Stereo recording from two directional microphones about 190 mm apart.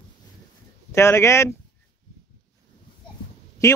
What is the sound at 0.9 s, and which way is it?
Speech, 15° left (ahead or behind).